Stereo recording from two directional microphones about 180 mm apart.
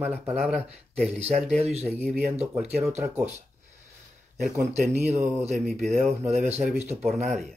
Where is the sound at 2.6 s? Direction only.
5° right (ahead or behind).